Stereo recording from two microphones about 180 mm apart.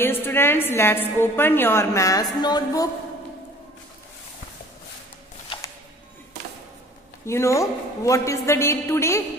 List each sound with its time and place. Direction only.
0.0 s a woman's voice: 10° left (ahead or behind)
7.2 s a woman's voice: 15° left (ahead or behind)